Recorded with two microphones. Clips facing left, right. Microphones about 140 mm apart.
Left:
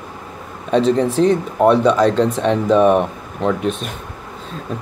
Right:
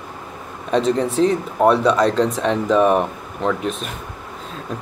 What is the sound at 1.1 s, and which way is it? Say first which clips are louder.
Speech: left 2 dB; centre (ahead or behind).